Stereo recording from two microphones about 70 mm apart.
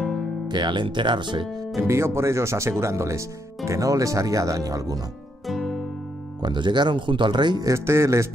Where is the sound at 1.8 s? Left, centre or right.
Right.